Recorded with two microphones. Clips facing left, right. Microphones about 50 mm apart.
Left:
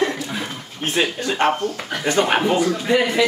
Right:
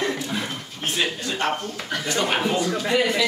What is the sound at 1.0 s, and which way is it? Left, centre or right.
Speech, left.